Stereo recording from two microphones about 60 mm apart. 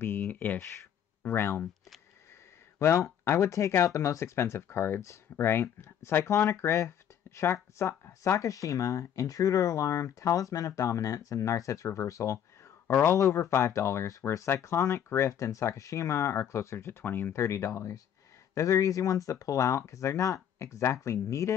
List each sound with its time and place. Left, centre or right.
0.0 s speech: left
1.2 s speech: left
2.8 s speech: left
12.8 s speech: left
13.1 s speech: left
13.5 s speech: left
17.0 s speech: left
17.3 s speech: left